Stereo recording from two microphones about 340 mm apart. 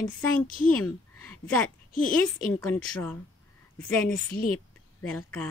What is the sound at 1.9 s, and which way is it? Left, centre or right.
Speech, left.